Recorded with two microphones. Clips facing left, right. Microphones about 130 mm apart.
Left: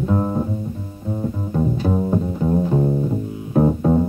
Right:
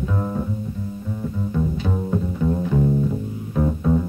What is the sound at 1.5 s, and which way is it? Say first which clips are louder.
Music: left 5 dB; 40° left (ahead or behind).